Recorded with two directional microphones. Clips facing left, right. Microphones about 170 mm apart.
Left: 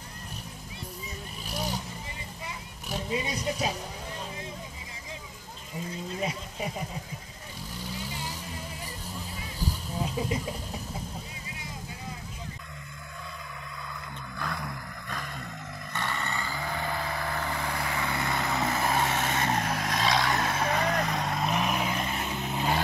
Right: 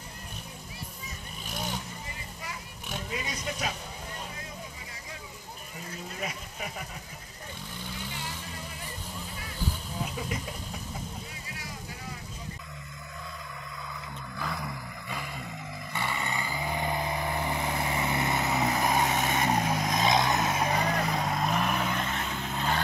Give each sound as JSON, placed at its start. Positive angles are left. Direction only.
{"t": 1.5, "sound": "vehicle", "side_deg": 35}
{"t": 2.9, "sound": "speech", "side_deg": 25}
{"t": 6.1, "sound": "speech", "side_deg": 30}
{"t": 7.8, "sound": "vehicle", "side_deg": 35}
{"t": 9.6, "sound": "vehicle", "side_deg": 40}
{"t": 14.4, "sound": "vehicle", "side_deg": 0}